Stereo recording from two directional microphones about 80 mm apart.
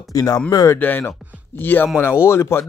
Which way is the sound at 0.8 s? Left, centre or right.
Left.